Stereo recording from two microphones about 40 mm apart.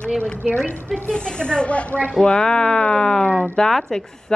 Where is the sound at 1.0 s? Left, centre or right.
Left.